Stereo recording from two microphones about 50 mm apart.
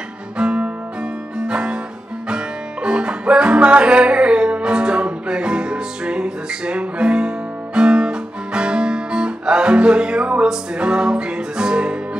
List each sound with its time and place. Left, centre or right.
0.4 s music: right